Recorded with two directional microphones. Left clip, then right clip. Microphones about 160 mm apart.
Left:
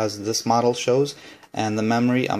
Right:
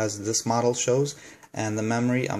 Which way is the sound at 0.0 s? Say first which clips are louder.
Left 3 dB; 5° left (ahead or behind).